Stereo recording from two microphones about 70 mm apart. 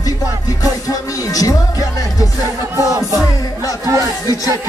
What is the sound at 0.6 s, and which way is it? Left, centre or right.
Music, left.